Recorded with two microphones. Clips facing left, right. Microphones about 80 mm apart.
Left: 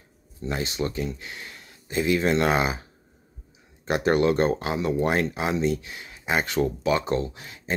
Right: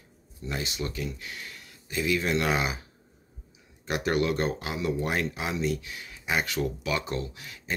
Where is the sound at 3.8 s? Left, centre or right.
Left.